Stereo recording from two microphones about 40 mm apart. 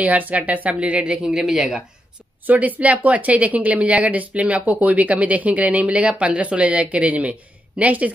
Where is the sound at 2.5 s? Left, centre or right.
Right.